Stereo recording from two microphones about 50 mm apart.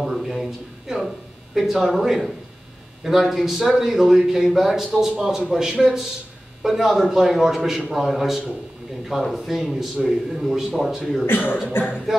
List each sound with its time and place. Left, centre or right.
0.0 s speech: centre
11.2 s speech: left